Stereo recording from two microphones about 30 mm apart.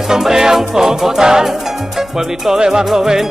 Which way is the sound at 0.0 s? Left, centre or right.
Centre.